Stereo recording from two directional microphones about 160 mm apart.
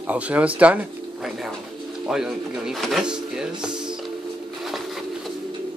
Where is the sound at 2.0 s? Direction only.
5° right (ahead or behind).